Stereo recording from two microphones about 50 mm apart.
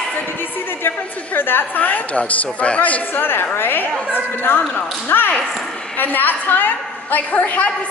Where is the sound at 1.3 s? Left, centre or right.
Left.